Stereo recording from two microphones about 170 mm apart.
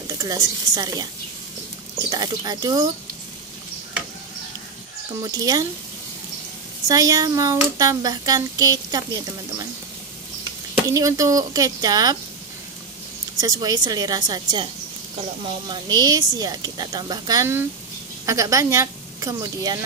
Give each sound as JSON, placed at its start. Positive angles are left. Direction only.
{"t": 0.2, "sound": "speech", "side_deg": -20}
{"t": 2.0, "sound": "speech", "side_deg": -25}
{"t": 5.2, "sound": "speech", "side_deg": -20}
{"t": 6.9, "sound": "speech", "side_deg": -20}
{"t": 10.7, "sound": "speech", "side_deg": -20}
{"t": 13.4, "sound": "a woman's voice", "side_deg": -20}